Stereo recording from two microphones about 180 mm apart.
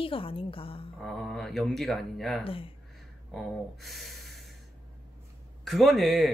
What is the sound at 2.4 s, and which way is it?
Speech, 30° left (ahead or behind).